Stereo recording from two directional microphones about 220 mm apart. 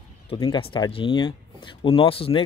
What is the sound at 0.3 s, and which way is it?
Speech, 25° left (ahead or behind).